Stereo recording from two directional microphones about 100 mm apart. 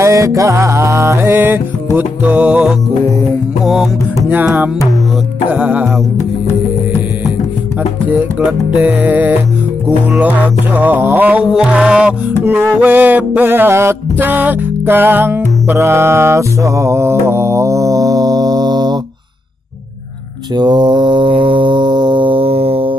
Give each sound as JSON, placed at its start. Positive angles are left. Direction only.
{"t": 0.0, "sound": "music", "side_deg": -30}
{"t": 4.3, "sound": "music", "side_deg": -15}
{"t": 8.1, "sound": "music", "side_deg": -15}
{"t": 20.5, "sound": "mantra", "side_deg": -50}